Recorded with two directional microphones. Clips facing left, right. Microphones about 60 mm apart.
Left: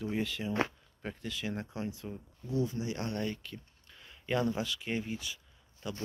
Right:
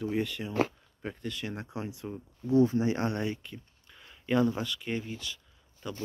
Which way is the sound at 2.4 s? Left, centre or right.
Right.